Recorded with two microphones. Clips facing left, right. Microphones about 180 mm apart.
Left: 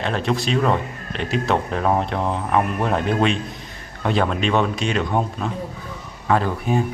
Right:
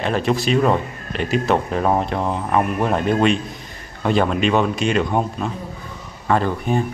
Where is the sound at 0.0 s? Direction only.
5° right (ahead or behind).